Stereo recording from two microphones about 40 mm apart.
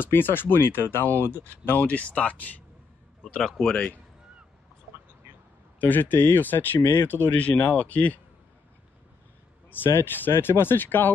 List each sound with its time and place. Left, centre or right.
0.0 s speech: left
1.0 s speech: left
1.7 s speech: left
3.3 s speech: centre
5.8 s speech: left
7.4 s speech: left
9.7 s speech: left
10.3 s speech: left